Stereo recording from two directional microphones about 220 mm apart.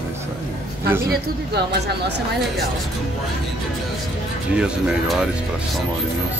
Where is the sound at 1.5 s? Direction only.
50° right (ahead or behind).